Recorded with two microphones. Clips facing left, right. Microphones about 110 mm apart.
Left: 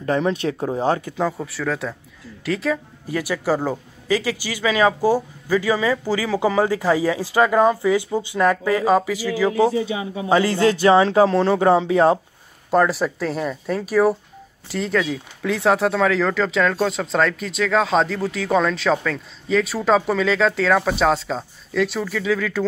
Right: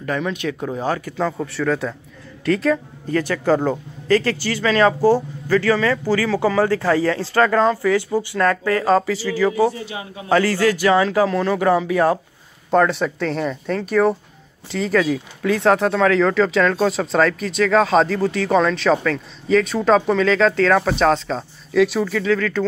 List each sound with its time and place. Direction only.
0.0 s speech: 30° left (ahead or behind); by 1.5 s 15° left (ahead or behind)
1.5 s a man's voice: centre (ahead or behind); by 12.2 s 25° left (ahead or behind)
12.7 s speech: 5° left (ahead or behind)